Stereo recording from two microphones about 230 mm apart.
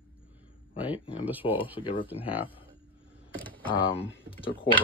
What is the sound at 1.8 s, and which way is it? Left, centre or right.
Speech, left.